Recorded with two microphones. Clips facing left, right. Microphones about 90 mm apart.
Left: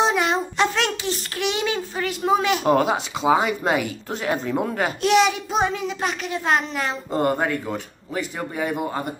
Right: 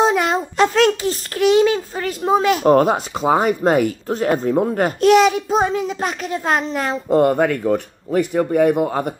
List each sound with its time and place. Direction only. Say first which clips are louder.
0.0 s a child's voice: right 4 dB; 45° right (ahead or behind)
7.2 s speech: right 6 dB; 60° right (ahead or behind)